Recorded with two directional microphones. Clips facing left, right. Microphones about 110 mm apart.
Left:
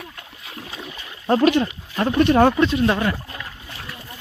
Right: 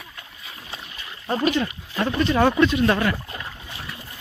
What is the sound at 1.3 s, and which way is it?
Speech, 70° left (ahead or behind).